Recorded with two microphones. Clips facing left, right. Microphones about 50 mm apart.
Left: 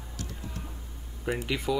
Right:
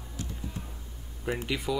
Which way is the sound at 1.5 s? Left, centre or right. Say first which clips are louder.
Left 2 dB; centre.